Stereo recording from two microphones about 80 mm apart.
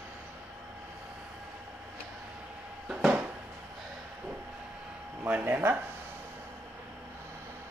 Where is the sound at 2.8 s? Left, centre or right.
Centre.